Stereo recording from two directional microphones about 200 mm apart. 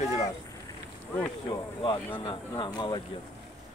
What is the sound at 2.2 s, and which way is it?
Speech, 20° left (ahead or behind).